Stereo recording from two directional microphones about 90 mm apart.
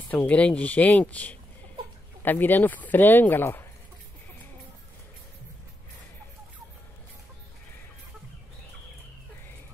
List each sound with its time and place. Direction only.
0.1 s speech: 15° left (ahead or behind)